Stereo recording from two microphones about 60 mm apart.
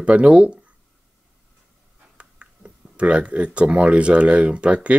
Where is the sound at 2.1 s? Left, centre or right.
Centre.